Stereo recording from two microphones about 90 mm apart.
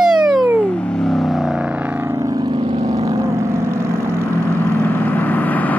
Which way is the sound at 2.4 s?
70° right (ahead or behind).